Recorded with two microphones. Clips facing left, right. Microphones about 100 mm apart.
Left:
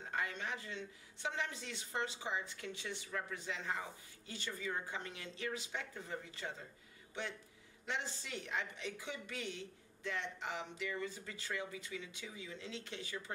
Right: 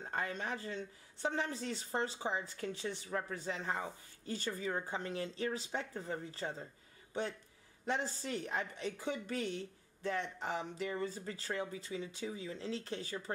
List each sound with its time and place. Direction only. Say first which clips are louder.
0.0 s a woman's voice: right 2 dB; 40° right (ahead or behind)